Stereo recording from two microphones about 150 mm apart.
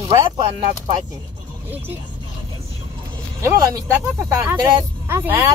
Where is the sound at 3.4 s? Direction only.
20° right (ahead or behind).